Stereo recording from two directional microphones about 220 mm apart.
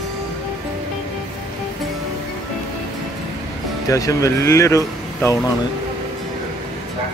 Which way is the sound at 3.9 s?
15° left (ahead or behind).